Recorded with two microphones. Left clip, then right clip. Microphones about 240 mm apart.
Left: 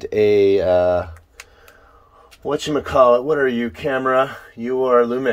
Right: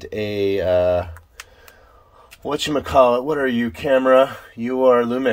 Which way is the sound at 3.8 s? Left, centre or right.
Centre.